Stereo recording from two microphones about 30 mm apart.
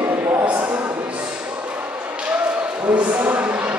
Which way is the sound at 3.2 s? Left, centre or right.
Right.